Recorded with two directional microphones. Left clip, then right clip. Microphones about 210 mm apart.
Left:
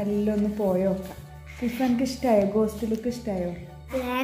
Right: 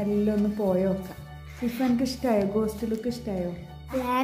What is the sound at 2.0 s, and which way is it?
A woman's voice, 15° left (ahead or behind).